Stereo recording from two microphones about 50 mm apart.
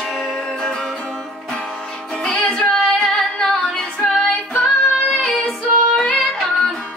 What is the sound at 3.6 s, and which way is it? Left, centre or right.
Music, centre.